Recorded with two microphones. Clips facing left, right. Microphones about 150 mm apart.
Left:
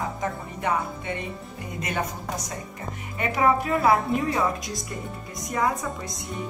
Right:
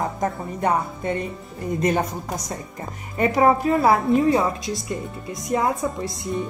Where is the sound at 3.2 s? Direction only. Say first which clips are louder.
Right 5 dB; 35° right (ahead or behind).